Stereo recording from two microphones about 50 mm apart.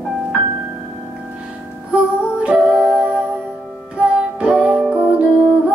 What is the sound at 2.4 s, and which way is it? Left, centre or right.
Music, centre.